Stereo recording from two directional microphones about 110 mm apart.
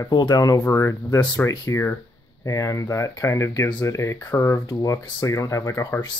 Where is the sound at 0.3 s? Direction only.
30° left (ahead or behind).